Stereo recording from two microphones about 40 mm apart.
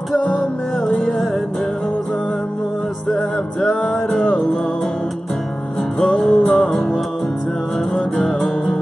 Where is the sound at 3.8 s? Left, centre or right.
Left.